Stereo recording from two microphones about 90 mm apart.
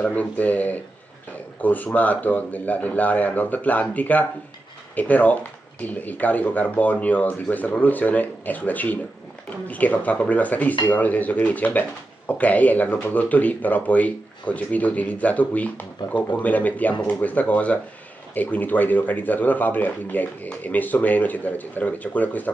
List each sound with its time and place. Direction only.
0.0 s speech: 15° left (ahead or behind)